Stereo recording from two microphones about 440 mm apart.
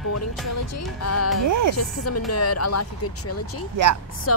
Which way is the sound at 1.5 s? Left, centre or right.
Right.